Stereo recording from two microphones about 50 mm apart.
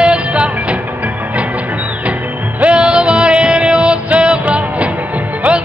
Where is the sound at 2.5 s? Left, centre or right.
Right.